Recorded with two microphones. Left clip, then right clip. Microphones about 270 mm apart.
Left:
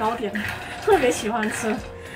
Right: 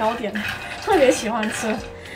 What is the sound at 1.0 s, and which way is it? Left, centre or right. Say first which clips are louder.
Speech: right 3 dB; centre.